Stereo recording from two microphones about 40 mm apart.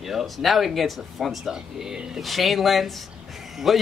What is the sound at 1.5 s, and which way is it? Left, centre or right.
Speech, centre.